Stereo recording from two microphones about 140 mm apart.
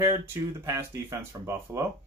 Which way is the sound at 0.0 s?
20° right (ahead or behind).